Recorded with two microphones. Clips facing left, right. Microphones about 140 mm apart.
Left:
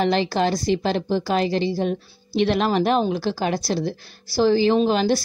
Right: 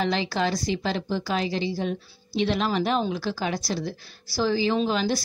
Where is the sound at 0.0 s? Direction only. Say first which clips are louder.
Left 5 dB; 60° left (ahead or behind).